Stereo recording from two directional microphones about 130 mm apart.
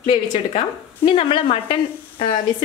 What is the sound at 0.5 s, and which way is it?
Speech, 45° left (ahead or behind).